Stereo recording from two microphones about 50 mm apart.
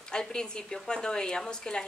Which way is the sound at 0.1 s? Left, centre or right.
Centre.